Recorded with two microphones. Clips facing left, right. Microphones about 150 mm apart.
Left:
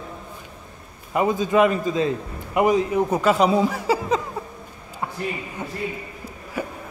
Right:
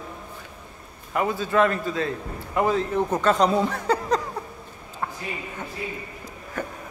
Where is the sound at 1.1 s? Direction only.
20° left (ahead or behind).